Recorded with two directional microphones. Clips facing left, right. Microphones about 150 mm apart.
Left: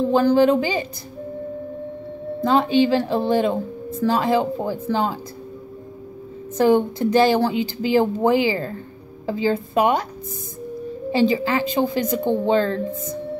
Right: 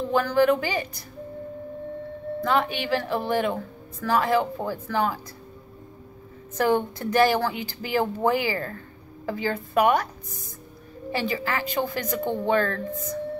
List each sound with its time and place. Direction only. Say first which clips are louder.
0.0 s speech: left 5 dB; 30° left (ahead or behind)
2.4 s speech: left 8 dB; 30° left (ahead or behind)
6.5 s speech: left 6 dB; 25° left (ahead or behind)
11.1 s speech: left 8 dB; 25° left (ahead or behind)